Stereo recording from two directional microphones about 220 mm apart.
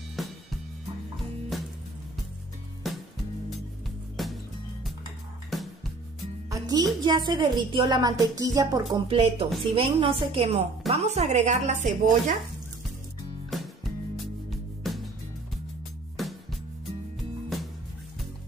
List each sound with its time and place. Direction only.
0.2 s music: centre (ahead or behind)
1.5 s music: centre (ahead or behind)
2.8 s music: centre (ahead or behind)
4.2 s music: centre (ahead or behind)
5.5 s music: centre (ahead or behind)
6.5 s a woman's voice: 15° right (ahead or behind); by 12.4 s 35° right (ahead or behind)
13.5 s music: centre (ahead or behind)
16.2 s music: centre (ahead or behind)